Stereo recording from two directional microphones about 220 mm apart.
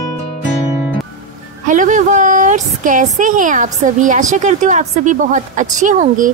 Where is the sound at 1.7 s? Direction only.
35° right (ahead or behind).